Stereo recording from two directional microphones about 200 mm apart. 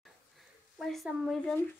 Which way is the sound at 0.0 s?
Centre (ahead or behind).